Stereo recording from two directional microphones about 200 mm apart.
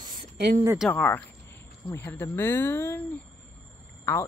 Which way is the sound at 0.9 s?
10° left (ahead or behind).